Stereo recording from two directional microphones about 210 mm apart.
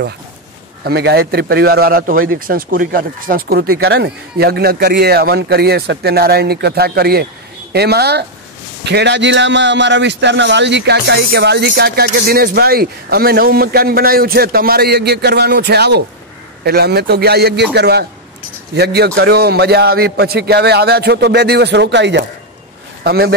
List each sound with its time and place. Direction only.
0.8 s a man's voice: 50° right (ahead or behind)